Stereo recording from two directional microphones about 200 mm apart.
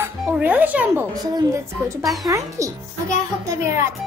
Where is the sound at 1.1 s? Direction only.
20° right (ahead or behind).